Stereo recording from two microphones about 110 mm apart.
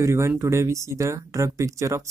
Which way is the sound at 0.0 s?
25° right (ahead or behind).